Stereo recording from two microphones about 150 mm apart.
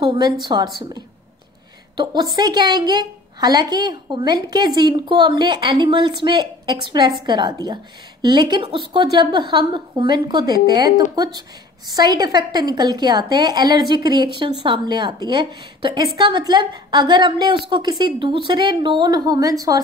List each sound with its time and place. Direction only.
0.0 s a woman's voice: 30° right (ahead or behind)
11.9 s a woman's voice: 25° right (ahead or behind)